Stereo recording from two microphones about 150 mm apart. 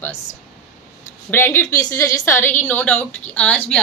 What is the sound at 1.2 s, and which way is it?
A woman's voice, 15° left (ahead or behind).